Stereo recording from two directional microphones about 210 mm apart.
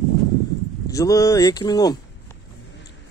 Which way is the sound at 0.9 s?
15° left (ahead or behind).